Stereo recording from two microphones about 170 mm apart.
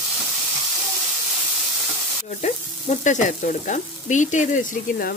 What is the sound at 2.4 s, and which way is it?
Frying, 45° left (ahead or behind).